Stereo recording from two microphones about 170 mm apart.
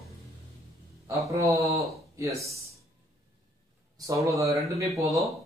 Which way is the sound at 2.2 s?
20° right (ahead or behind).